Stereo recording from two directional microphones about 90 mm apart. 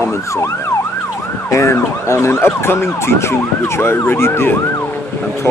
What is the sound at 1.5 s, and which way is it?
Emergency vehicle, 30° left (ahead or behind).